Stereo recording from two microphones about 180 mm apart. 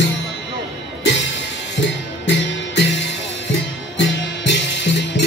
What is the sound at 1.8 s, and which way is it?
Music, 80° left.